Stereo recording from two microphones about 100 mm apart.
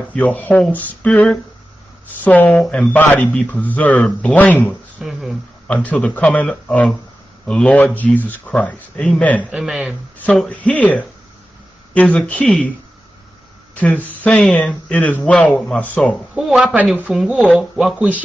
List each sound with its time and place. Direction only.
0.1 s speech: 15° left (ahead or behind)
2.2 s speech: 15° left (ahead or behind)
4.9 s speech: 5° right (ahead or behind)
5.7 s speech: 15° left (ahead or behind)
9.4 s speech: 5° right (ahead or behind)
10.2 s speech: 15° left (ahead or behind)
13.7 s speech: 15° left (ahead or behind)
16.3 s speech: 5° right (ahead or behind)